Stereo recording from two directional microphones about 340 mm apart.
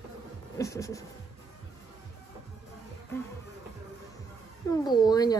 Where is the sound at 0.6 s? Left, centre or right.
Centre.